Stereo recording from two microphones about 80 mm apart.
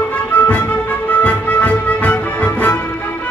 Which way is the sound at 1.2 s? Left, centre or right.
Centre.